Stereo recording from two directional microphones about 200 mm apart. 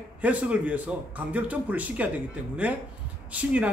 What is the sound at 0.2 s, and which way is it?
Speech, 5° right (ahead or behind).